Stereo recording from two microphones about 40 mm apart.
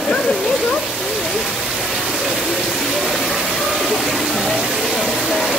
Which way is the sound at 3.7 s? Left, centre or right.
Centre.